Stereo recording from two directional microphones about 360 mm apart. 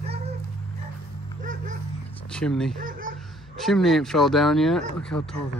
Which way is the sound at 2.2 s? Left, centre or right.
Centre.